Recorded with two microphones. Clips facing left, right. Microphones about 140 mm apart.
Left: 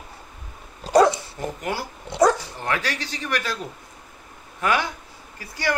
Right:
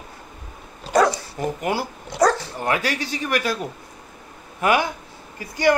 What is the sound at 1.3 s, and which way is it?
Speech, 15° right (ahead or behind).